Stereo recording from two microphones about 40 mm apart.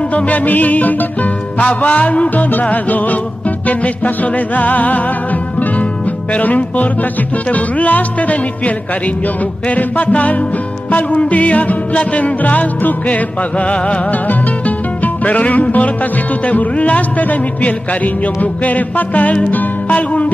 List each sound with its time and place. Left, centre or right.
0.1 s music: left
15.2 s music: left